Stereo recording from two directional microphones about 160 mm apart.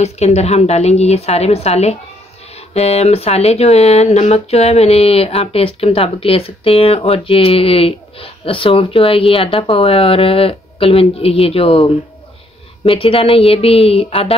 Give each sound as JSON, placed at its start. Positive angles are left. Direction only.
{"t": 0.0, "sound": "speech", "side_deg": 45}